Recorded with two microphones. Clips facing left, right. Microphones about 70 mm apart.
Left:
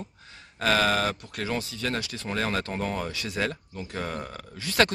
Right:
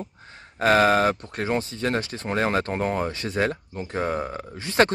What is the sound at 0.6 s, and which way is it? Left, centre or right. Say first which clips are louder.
Speech: right 6 dB; right.